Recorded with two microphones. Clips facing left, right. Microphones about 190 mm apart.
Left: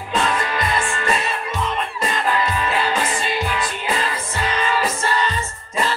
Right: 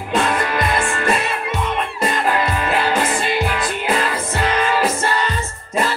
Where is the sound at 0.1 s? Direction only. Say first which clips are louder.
Right 3 dB; 55° right (ahead or behind).